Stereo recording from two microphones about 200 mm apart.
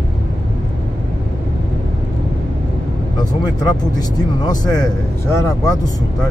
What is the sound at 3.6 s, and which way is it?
Speech, 20° left (ahead or behind).